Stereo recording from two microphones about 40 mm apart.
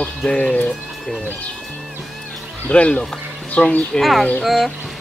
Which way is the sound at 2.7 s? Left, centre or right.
Left.